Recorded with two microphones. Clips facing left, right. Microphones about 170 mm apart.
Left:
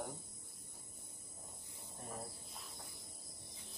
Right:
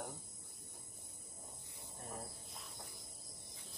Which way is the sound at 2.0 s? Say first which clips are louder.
Left 1 dB; centre (ahead or behind).